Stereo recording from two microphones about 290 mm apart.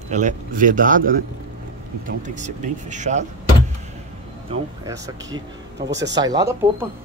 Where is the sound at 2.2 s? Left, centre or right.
Right.